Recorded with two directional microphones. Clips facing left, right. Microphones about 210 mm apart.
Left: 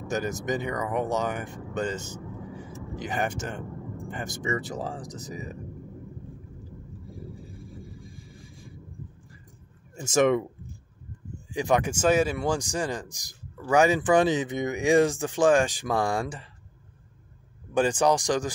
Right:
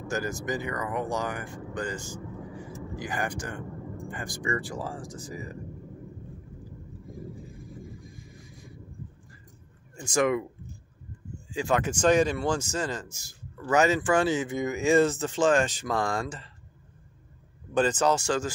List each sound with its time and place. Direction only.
0.1 s speech: 20° left (ahead or behind)
7.8 s a sound: 30° left (ahead or behind)
9.9 s speech: 20° left (ahead or behind)
11.5 s speech: 15° left (ahead or behind)
17.7 s speech: 10° left (ahead or behind)